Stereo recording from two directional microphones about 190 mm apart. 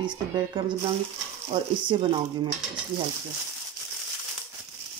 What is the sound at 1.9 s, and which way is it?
Speech, 25° right (ahead or behind).